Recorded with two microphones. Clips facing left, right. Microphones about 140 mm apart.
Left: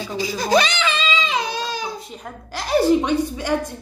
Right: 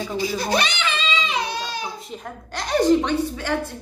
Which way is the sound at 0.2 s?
90° left.